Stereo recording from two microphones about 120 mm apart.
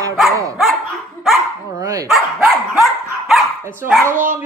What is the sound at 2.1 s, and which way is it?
Dog, centre (ahead or behind).